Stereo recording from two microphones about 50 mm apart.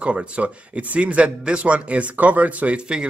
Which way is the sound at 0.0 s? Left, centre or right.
Right.